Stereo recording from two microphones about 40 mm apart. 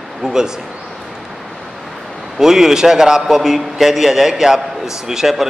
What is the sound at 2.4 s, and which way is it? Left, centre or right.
A man's voice, centre.